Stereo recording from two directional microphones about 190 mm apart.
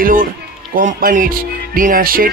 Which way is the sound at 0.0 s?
45° right (ahead or behind).